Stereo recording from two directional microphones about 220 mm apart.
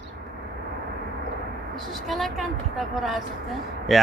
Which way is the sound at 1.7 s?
Centre (ahead or behind).